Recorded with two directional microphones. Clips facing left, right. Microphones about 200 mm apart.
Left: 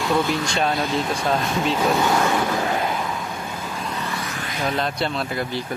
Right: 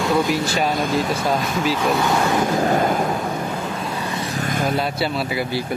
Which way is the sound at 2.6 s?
45° right (ahead or behind).